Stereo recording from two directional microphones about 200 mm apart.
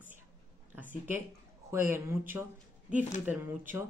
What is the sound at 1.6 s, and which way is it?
Speech, 10° right (ahead or behind).